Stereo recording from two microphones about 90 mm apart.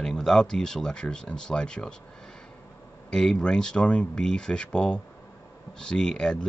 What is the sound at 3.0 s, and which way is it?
Speech, 10° left (ahead or behind).